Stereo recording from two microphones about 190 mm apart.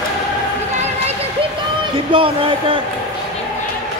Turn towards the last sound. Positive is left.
turn(degrees=-30)  # may be behind; listen again after turning